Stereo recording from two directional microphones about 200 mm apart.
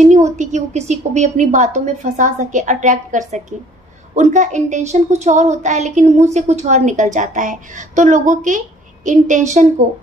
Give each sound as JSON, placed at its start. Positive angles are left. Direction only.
{"t": 0.0, "sound": "a woman's voice", "side_deg": -35}